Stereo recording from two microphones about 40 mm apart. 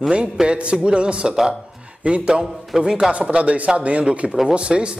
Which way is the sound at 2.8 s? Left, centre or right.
Right.